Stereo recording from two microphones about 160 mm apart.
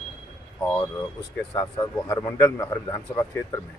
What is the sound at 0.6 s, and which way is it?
A man's voice, 10° left (ahead or behind).